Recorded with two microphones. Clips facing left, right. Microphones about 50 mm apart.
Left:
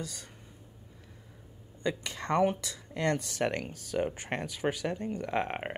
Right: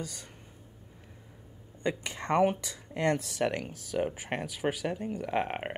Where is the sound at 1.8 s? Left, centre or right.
Right.